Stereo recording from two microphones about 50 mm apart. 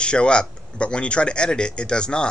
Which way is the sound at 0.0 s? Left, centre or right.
Centre.